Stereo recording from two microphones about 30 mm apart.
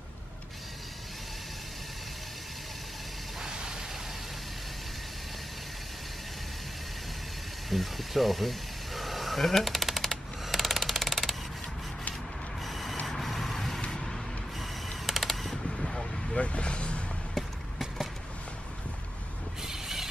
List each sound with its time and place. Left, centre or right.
3.4 s vehicle: right
7.7 s a sound: centre
12.6 s printer: centre
13.1 s vehicle: centre
13.8 s vehicle: centre
14.6 s mechanisms: centre
15.5 s vehicle: centre
16.3 s vehicle: left
17.4 s a sound: centre
19.6 s a sound: centre